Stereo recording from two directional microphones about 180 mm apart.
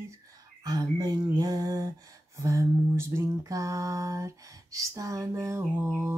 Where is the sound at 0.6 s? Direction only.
20° right (ahead or behind).